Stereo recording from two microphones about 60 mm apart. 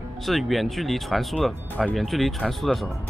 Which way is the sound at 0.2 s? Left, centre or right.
Centre.